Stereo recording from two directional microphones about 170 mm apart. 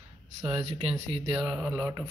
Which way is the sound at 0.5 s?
35° right (ahead or behind).